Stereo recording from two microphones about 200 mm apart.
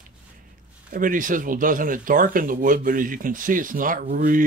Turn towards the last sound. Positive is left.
turn(degrees=-40)  # may be behind; listen again after turning